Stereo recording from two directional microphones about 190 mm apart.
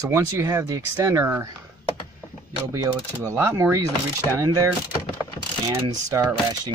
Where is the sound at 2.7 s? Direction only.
20° right (ahead or behind).